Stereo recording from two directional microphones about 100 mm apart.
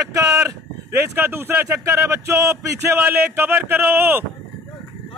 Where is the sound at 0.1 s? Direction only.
30° right (ahead or behind).